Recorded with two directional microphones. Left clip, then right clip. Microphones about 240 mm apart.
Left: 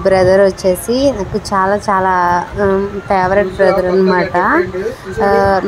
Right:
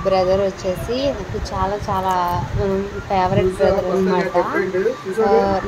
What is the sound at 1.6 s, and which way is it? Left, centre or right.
A woman's voice, left.